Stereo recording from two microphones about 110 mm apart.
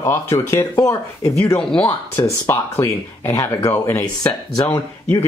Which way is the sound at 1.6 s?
5° left (ahead or behind).